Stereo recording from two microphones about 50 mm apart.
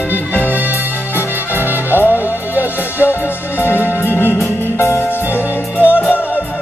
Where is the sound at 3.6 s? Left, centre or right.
Left.